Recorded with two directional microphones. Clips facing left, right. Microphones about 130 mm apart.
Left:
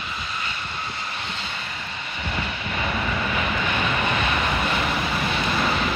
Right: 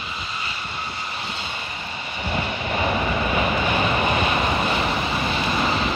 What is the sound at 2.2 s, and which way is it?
Vehicle, 25° right (ahead or behind).